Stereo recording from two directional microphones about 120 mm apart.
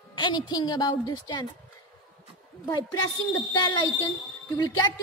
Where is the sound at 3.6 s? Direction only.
35° left (ahead or behind).